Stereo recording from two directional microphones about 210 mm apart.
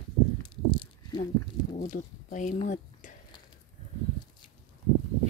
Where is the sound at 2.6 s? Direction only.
35° left (ahead or behind).